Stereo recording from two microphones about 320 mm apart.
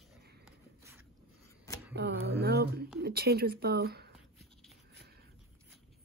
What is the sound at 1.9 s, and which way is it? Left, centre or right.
Speech, right.